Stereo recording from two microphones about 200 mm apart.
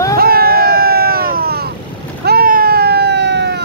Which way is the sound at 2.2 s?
50° right (ahead or behind).